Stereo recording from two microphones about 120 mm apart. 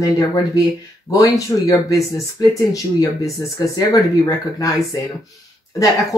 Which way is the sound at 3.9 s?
30° left (ahead or behind).